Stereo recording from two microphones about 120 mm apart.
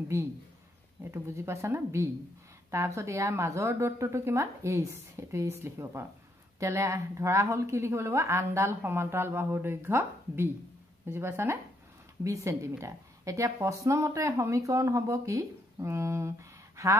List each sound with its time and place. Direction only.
1.1 s speech: 20° right (ahead or behind)